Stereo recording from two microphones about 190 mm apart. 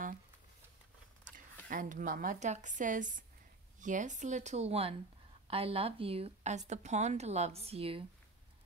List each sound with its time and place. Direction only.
1.7 s a woman's voice: 45° right (ahead or behind)